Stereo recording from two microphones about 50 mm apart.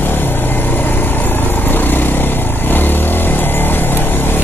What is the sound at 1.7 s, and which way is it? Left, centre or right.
Vehicle, left.